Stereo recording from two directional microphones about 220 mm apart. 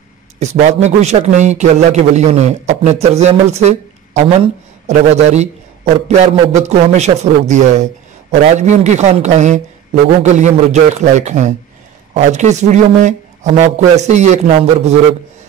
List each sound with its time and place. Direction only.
0.4 s speech: 30° right (ahead or behind)